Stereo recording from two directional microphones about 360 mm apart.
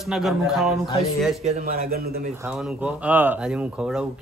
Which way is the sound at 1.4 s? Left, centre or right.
Right.